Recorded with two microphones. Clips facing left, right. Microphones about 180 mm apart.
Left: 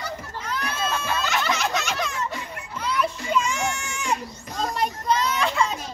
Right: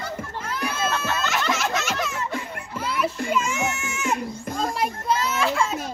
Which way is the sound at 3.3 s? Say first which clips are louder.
Even; 5° right (ahead or behind).